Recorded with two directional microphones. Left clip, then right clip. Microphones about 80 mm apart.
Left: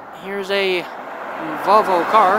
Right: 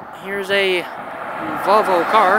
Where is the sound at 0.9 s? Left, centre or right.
Left.